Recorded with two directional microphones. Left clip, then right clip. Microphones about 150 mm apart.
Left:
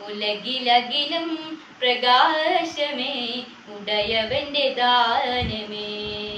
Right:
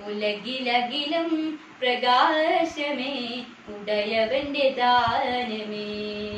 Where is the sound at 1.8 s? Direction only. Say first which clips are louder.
Left 3 dB; 10° right (ahead or behind).